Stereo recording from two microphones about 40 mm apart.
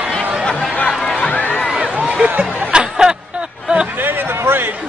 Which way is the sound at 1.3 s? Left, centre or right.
Left.